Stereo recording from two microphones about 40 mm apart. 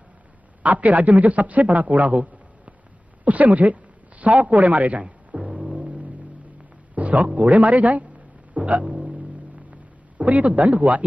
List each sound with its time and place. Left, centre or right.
0.6 s a man's voice: right
5.0 s music: right
7.0 s a sound: right
7.2 s speech: right
8.5 s music: right
9.7 s a sound: right